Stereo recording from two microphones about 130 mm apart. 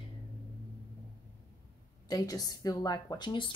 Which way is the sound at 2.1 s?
30° left (ahead or behind).